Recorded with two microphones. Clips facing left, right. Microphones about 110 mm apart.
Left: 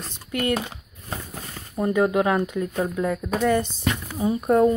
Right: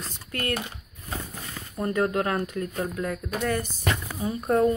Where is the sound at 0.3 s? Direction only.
15° left (ahead or behind).